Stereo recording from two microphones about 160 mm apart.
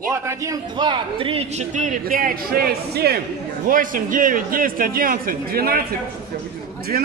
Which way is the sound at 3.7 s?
60° right (ahead or behind).